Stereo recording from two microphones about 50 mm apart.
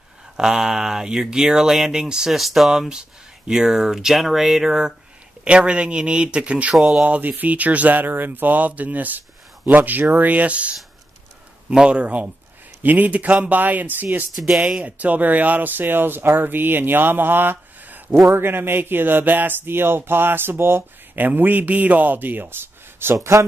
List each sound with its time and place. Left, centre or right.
0.4 s speech: centre
2.7 s speech: centre
5.4 s speech: right
6.7 s speech: centre
7.0 s speech: right
12.8 s speech: right
14.3 s speech: centre
14.8 s speech: right
18.2 s speech: right
21.1 s speech: right